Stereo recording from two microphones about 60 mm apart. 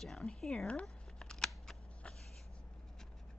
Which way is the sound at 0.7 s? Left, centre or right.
Centre.